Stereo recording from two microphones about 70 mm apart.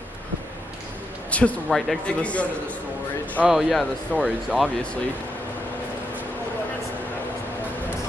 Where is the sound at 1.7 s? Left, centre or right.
Centre.